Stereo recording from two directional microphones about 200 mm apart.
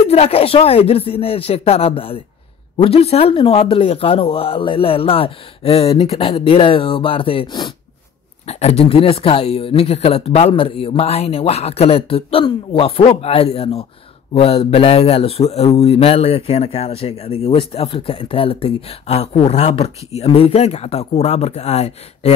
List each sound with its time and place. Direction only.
0.1 s a man's voice: 30° left (ahead or behind)